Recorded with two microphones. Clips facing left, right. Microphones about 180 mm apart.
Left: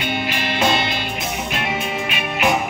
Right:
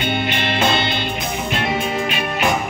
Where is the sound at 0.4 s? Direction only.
30° right (ahead or behind).